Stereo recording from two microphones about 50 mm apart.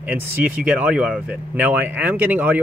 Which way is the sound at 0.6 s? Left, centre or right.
Right.